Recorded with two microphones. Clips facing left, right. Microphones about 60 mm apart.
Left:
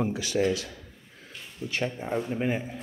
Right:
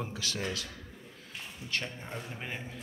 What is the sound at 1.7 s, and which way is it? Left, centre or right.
A man's voice, centre.